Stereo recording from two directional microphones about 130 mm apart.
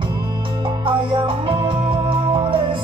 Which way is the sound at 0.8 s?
40° right (ahead or behind).